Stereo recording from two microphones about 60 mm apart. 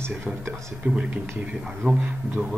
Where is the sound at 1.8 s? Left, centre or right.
Right.